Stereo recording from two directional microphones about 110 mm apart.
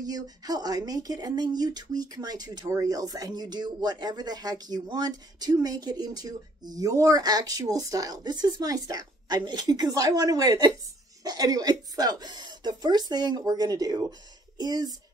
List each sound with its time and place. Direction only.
0.0 s speech: 35° right (ahead or behind)